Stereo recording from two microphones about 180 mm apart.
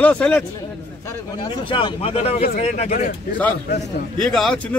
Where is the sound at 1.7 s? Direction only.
30° left (ahead or behind).